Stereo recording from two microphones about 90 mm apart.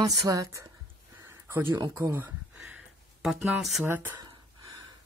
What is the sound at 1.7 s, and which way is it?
Speech, 45° right (ahead or behind).